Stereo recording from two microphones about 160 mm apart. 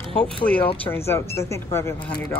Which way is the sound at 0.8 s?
15° left (ahead or behind).